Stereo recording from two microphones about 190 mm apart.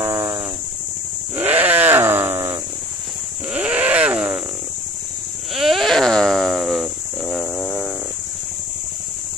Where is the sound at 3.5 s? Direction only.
5° right (ahead or behind).